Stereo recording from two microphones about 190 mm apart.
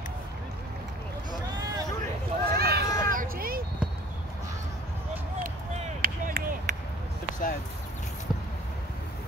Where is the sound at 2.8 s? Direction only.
15° left (ahead or behind).